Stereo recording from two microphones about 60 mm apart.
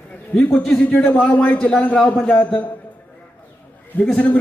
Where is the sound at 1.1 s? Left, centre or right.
Centre.